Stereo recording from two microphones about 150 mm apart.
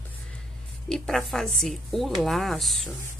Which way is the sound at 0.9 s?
Centre (ahead or behind).